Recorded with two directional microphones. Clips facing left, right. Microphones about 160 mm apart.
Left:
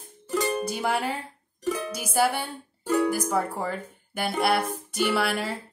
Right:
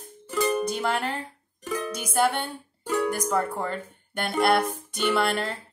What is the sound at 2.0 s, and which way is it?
Speech, 5° left (ahead or behind).